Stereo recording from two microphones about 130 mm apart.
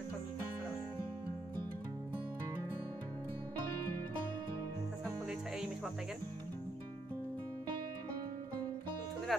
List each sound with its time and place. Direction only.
9.3 s music: centre (ahead or behind)